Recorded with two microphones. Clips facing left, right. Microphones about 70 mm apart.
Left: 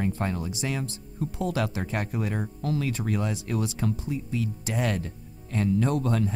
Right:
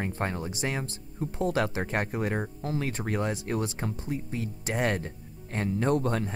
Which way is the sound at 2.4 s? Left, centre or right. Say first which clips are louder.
Left 3 dB; right.